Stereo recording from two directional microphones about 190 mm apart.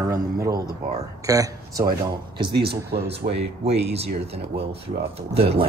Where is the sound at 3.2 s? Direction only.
45° right (ahead or behind).